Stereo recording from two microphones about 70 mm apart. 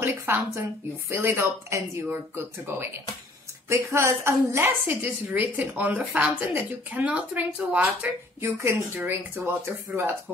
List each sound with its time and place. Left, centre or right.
0.0 s speech: right
2.0 s speech: right
4.6 s speech: right
8.4 s speech: right